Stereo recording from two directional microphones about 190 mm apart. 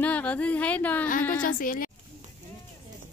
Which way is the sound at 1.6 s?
45° left (ahead or behind).